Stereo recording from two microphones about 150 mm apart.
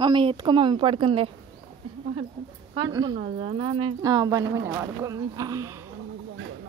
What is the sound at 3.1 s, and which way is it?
Speech, 45° right (ahead or behind).